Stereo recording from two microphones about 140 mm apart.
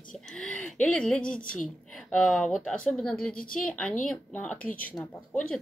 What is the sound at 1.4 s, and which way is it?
Speech, 75° left (ahead or behind).